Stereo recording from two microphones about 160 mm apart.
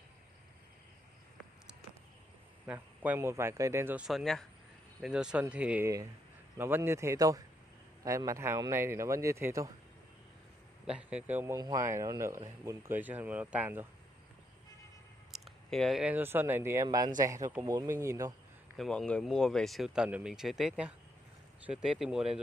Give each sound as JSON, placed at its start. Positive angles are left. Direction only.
{"t": 2.6, "sound": "a man's voice", "side_deg": -10}
{"t": 10.9, "sound": "a man's voice", "side_deg": -5}
{"t": 11.5, "sound": "a man's voice", "side_deg": -20}
{"t": 15.3, "sound": "speech", "side_deg": 0}
{"t": 18.8, "sound": "speech", "side_deg": 5}